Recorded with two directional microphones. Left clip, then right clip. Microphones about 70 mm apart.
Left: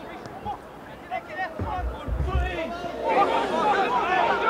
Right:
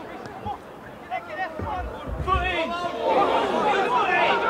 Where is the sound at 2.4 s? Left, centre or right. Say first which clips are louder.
Right 5 dB; right.